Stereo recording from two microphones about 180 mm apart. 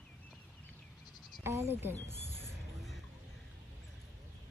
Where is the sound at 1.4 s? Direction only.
15° right (ahead or behind).